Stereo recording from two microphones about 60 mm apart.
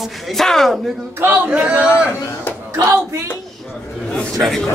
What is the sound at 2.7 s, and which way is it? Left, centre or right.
Speech, right.